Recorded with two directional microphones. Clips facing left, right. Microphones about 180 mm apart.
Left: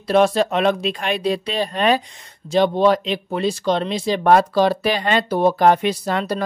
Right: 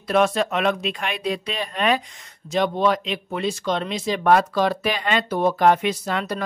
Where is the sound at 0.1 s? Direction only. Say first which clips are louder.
Left 4 dB; 30° left (ahead or behind).